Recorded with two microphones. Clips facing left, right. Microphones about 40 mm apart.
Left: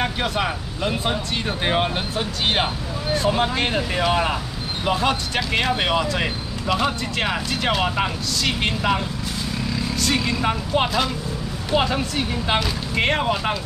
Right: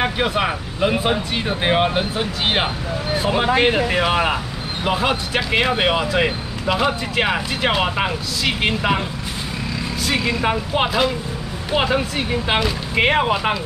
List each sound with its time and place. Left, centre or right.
0.0 s speech: centre
10.0 s speech: centre